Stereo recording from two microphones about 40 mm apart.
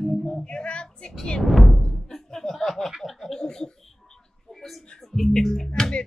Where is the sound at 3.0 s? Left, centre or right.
Centre.